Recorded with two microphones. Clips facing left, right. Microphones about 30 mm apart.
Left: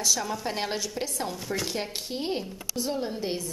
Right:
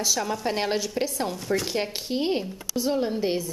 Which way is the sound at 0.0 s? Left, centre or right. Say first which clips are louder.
Right 2 dB; centre.